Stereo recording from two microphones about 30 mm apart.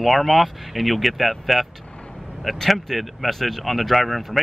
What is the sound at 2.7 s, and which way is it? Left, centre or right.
Speech, centre.